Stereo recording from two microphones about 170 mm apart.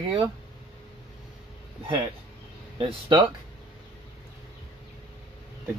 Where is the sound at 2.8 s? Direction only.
30° right (ahead or behind).